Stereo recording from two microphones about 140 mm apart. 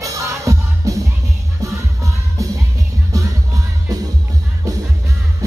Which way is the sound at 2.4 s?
25° right (ahead or behind).